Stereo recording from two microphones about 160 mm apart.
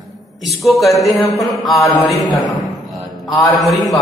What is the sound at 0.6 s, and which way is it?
A man's voice, centre (ahead or behind).